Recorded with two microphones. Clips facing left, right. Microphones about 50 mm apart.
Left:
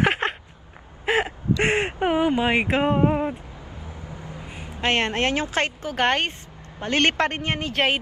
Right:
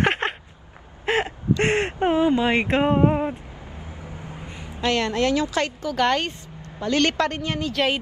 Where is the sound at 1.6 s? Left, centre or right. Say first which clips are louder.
Right 1 dB; centre.